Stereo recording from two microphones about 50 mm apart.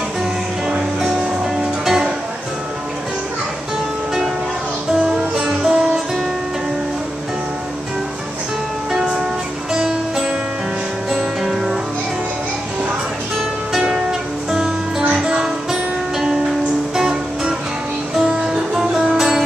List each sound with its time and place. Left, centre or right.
1.4 s music: centre
4.9 s music: centre
8.9 s music: centre
14.5 s music: centre